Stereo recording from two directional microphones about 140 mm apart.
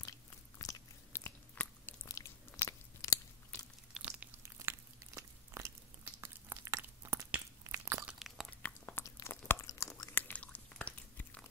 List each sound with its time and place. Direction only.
0.6 s biting: 25° left (ahead or behind)
1.1 s biting: 15° left (ahead or behind)
3.9 s biting: 10° right (ahead or behind)
7.7 s crunch: 20° right (ahead or behind)
8.1 s crunch: centre (ahead or behind)
8.5 s chewing: 15° left (ahead or behind)